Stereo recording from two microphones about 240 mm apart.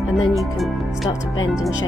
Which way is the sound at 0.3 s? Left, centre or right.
Centre.